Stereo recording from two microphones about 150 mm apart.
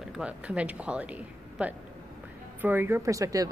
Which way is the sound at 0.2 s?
10° right (ahead or behind).